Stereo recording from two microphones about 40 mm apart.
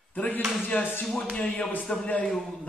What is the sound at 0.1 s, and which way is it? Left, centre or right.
Speech, left.